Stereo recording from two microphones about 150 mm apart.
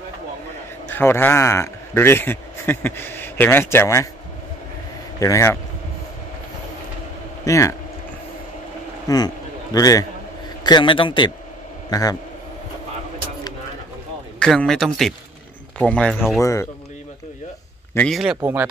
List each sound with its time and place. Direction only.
0.8 s a man's voice: 15° left (ahead or behind)
5.2 s speech: 20° left (ahead or behind)
7.4 s speech: 20° left (ahead or behind)
9.1 s a man's voice: 25° left (ahead or behind)
14.4 s speech: 5° left (ahead or behind)
16.3 s speech: 20° left (ahead or behind)
17.9 s speech: 5° left (ahead or behind)
18.4 s speech: 15° right (ahead or behind)